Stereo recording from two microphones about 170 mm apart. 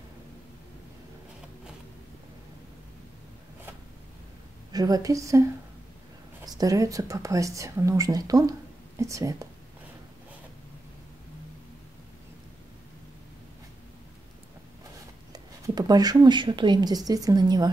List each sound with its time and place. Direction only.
4.7 s a woman's voice: 20° right (ahead or behind)
6.4 s a woman's voice: 20° right (ahead or behind)
15.3 s speech: 20° right (ahead or behind)